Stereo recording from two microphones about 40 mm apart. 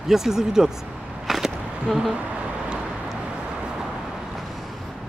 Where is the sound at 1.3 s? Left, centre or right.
Centre.